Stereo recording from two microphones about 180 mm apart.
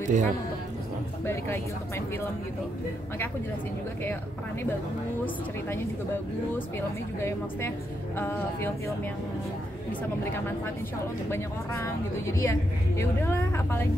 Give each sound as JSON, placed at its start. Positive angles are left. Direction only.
{"t": 0.0, "sound": "speech", "side_deg": -45}
{"t": 1.2, "sound": "a woman's voice", "side_deg": 15}
{"t": 7.2, "sound": "a woman's voice", "side_deg": 15}
{"t": 11.2, "sound": "a woman's voice", "side_deg": 15}